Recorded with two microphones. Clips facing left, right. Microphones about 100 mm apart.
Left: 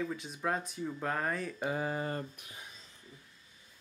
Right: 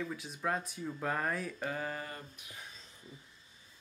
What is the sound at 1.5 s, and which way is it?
Speech, 15° left (ahead or behind).